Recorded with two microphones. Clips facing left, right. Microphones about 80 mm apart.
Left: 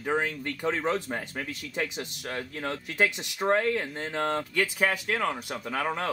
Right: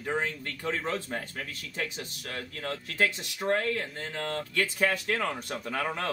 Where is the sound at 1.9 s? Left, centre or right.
Left.